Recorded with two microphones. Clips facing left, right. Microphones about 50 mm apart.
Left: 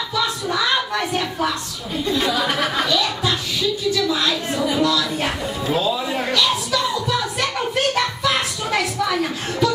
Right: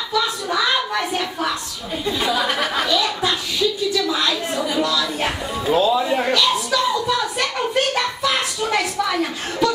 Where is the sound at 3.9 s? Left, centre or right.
Centre.